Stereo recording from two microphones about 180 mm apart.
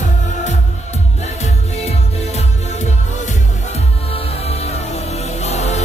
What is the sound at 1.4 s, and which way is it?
Music, 35° left (ahead or behind).